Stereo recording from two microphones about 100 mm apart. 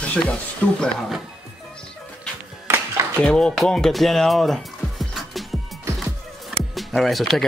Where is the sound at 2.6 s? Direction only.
25° right (ahead or behind).